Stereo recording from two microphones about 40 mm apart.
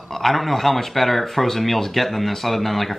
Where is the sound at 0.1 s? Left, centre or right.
Centre.